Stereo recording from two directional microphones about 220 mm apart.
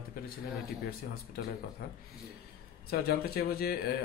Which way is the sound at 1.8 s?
45° left (ahead or behind).